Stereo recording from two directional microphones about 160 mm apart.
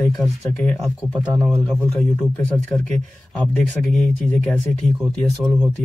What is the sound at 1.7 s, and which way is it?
Speech, 5° left (ahead or behind).